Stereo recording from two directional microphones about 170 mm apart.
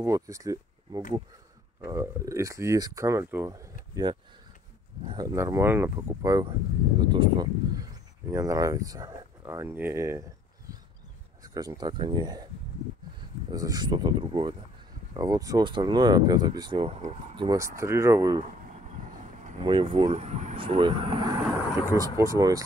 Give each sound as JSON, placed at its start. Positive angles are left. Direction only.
{"t": 0.0, "sound": "speech", "side_deg": -20}
{"t": 3.9, "sound": "speech", "side_deg": -25}
{"t": 11.4, "sound": "speech", "side_deg": -20}
{"t": 13.5, "sound": "speech", "side_deg": -25}
{"t": 18.6, "sound": "vehicle", "side_deg": -45}
{"t": 19.6, "sound": "speech", "side_deg": -30}
{"t": 20.5, "sound": "speech", "side_deg": -30}